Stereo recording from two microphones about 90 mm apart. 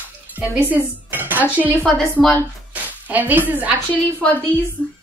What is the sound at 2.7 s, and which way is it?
Speech, 20° right (ahead or behind).